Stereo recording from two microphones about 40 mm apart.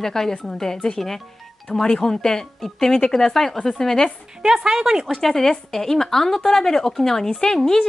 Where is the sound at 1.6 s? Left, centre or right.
Centre.